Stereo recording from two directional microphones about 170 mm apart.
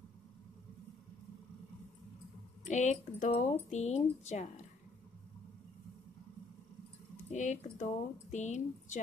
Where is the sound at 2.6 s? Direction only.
45° left (ahead or behind).